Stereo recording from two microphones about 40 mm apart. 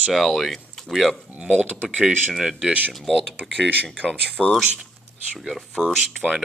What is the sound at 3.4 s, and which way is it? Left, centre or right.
Speech, right.